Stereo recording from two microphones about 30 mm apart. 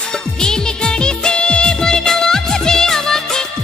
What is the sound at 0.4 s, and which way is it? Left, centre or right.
Music, left.